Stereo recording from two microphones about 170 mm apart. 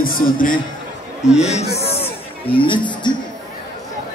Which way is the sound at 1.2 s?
40° left (ahead or behind).